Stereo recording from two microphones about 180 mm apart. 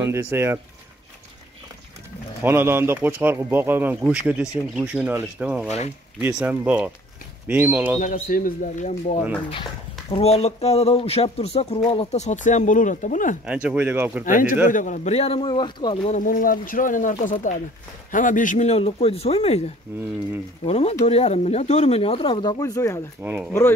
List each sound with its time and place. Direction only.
0.0 s speech: 15° right (ahead or behind)
2.4 s speech: 10° right (ahead or behind)
8.0 s speech: 50° left (ahead or behind)
13.5 s speech: 5° right (ahead or behind)
14.2 s speech: 50° left (ahead or behind); by 16.0 s 25° left (ahead or behind)
16.1 s speech: 50° left (ahead or behind)
20.6 s speech: 35° left (ahead or behind); by 23.0 s 20° left (ahead or behind)
23.2 s speech: 10° right (ahead or behind)